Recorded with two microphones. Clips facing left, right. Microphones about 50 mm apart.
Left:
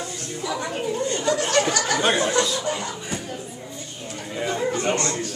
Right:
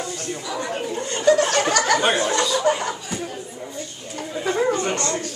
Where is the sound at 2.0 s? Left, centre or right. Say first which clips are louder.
Right 1 dB; centre.